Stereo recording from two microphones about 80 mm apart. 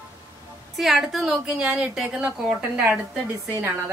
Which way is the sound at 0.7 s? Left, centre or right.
Centre.